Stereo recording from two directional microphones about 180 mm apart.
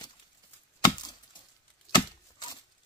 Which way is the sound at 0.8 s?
20° left (ahead or behind).